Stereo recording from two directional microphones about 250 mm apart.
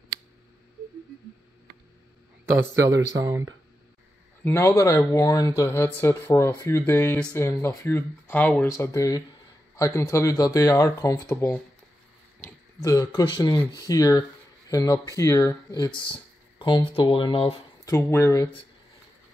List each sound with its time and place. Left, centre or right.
3.2 s speech: centre
4.5 s speech: centre